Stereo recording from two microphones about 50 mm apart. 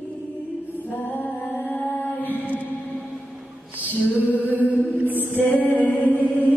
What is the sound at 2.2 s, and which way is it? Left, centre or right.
Mantra, left.